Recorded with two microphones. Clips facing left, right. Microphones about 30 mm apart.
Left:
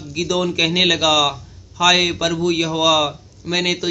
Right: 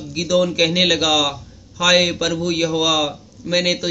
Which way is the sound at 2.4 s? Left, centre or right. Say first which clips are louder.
Even; left.